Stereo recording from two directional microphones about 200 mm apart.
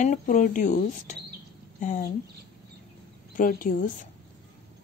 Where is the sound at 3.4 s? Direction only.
45° left (ahead or behind).